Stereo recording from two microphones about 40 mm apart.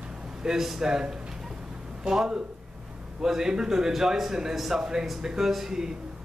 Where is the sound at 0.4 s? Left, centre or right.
Centre.